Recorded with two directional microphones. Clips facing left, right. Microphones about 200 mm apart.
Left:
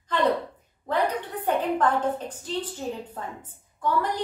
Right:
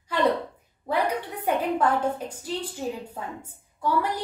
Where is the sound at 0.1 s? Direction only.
10° right (ahead or behind).